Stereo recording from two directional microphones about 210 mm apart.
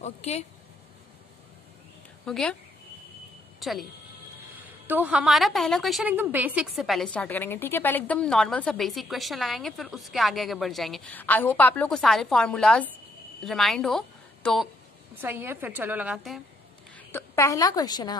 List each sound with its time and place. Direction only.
0.0 s speech: 30° left (ahead or behind)
2.2 s speech: centre (ahead or behind)
3.5 s a woman's voice: centre (ahead or behind)
4.8 s a woman's voice: 10° right (ahead or behind)
15.1 s a woman's voice: 10° right (ahead or behind)
16.9 s a woman's voice: 10° left (ahead or behind)